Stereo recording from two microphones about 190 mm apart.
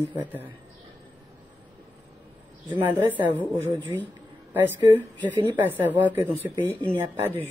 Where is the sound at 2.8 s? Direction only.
10° right (ahead or behind).